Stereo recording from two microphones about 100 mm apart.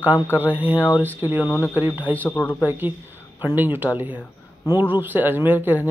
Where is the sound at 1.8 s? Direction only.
20° right (ahead or behind).